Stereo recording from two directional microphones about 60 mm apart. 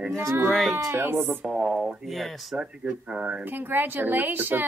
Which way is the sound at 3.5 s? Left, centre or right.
Right.